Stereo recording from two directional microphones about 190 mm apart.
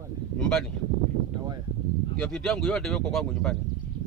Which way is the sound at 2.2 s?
5° left (ahead or behind).